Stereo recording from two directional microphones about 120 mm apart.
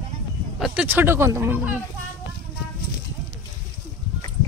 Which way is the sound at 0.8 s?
15° right (ahead or behind).